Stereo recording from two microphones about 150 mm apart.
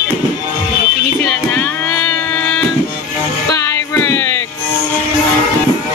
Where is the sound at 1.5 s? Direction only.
10° left (ahead or behind).